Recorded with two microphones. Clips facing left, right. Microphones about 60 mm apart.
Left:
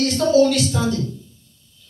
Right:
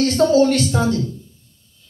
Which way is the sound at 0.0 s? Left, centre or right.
Right.